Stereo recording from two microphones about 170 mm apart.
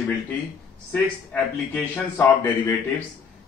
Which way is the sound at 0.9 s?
10° left (ahead or behind).